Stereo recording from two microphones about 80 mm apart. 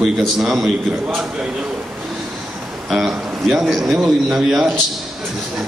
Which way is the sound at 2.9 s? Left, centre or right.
Centre.